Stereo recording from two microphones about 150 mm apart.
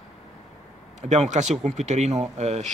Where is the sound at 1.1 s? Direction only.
50° right (ahead or behind).